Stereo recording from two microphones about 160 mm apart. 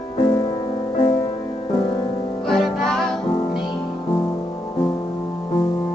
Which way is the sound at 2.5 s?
5° left (ahead or behind).